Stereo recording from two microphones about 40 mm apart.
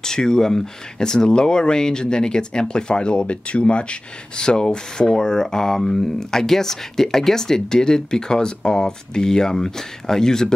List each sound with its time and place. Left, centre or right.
0.0 s speech: centre